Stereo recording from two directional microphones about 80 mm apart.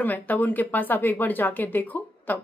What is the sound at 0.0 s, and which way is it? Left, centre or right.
A woman's voice, left.